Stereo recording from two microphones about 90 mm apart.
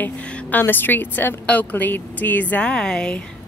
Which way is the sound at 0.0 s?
15° left (ahead or behind).